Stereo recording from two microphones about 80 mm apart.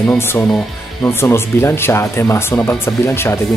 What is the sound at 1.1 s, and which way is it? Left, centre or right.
Speech, left.